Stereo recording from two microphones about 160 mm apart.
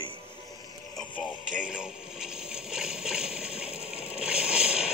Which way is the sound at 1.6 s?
5° right (ahead or behind).